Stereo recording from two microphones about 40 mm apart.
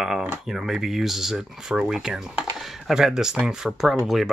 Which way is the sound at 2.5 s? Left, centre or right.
Centre.